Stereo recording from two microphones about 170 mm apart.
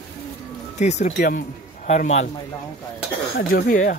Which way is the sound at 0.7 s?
45° left (ahead or behind).